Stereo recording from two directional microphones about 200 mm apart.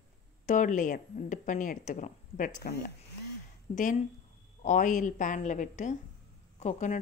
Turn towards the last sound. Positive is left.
turn(degrees=35)  # may be behind; listen again after turning